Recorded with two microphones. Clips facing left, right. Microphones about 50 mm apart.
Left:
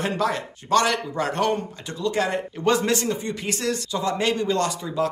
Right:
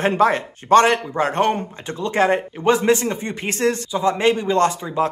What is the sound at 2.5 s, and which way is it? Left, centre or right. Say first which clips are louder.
Speech: right 5 dB; right.